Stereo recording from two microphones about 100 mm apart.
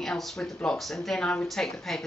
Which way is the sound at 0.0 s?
10° left (ahead or behind).